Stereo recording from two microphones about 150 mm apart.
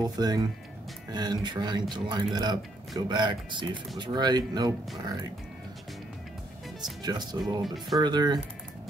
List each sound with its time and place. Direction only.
0.0 s speech: 25° right (ahead or behind)
6.8 s speech: 25° right (ahead or behind)
7.6 s speech: centre (ahead or behind)
8.0 s speech: 30° right (ahead or behind)